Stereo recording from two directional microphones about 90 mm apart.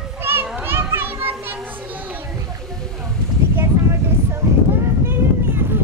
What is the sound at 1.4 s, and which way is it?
Music, 25° right (ahead or behind).